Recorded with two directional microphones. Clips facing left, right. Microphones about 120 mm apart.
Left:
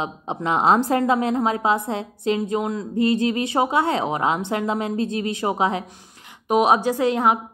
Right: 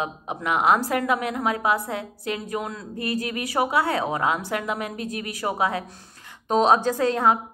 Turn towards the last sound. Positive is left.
turn(degrees=15)  # may be behind; listen again after turning